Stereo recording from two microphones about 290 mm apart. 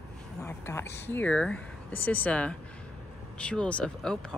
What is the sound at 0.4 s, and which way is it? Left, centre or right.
Speech, centre.